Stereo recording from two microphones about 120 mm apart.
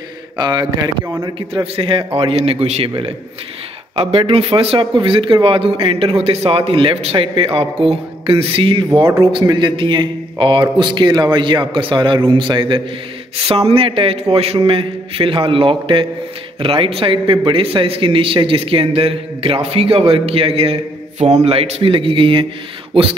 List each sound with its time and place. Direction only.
0.4 s a man's voice: 40° right (ahead or behind)
1.2 s speech: 50° right (ahead or behind)
3.9 s speech: 50° right (ahead or behind)
7.7 s speech: 5° right (ahead or behind)
8.3 s a man's voice: 50° right (ahead or behind)
13.5 s speech: 55° right (ahead or behind)